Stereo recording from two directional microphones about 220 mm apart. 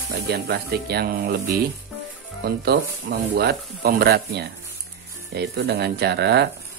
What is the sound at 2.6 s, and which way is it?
Speech, 50° right (ahead or behind).